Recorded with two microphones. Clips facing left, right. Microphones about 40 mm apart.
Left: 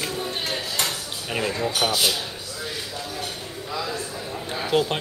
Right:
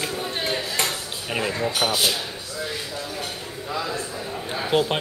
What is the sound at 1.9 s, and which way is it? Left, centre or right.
Speech, right.